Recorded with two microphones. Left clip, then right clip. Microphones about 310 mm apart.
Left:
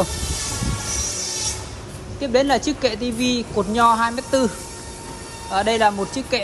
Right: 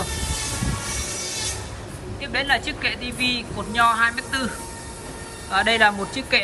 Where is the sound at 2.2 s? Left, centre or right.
Centre.